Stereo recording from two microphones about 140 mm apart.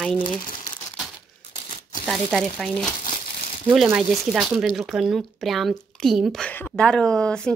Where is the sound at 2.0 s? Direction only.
Centre (ahead or behind).